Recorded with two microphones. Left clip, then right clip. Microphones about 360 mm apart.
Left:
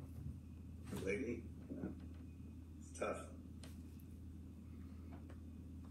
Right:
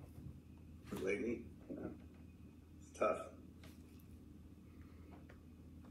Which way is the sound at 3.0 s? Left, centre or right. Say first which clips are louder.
Right 6 dB; centre.